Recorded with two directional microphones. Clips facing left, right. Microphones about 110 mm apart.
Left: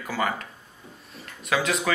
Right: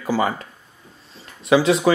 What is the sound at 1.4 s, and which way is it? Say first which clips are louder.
Speech: right 9 dB; 30° right (ahead or behind).